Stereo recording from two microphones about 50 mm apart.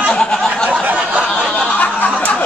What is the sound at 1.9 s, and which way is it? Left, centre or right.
Snicker, left.